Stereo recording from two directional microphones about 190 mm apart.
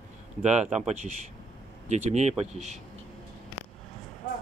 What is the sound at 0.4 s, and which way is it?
Speech, 35° right (ahead or behind).